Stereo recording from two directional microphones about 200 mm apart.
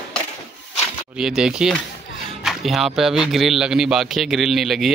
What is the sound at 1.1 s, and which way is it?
A man's voice, 5° right (ahead or behind).